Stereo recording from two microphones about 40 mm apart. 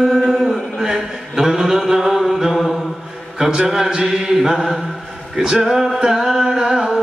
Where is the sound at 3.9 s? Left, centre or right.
Centre.